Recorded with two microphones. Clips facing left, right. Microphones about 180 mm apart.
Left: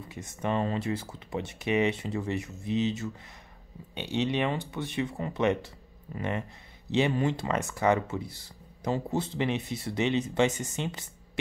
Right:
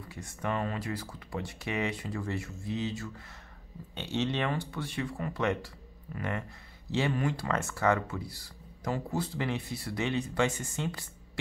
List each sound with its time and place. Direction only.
0.1 s speech: 20° left (ahead or behind)